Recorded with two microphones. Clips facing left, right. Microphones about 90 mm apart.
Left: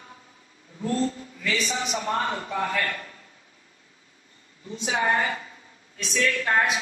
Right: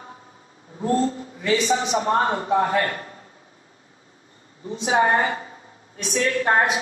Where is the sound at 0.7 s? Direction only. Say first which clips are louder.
Right 5 dB; 35° right (ahead or behind).